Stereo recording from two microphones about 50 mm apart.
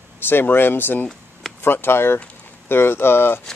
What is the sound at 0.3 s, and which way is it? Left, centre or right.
Speech, left.